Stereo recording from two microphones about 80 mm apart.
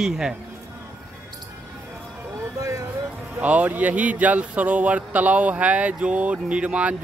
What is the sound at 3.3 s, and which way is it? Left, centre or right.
Speech, centre.